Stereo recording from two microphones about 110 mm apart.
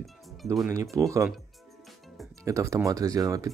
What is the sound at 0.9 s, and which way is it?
Speech, 30° right (ahead or behind).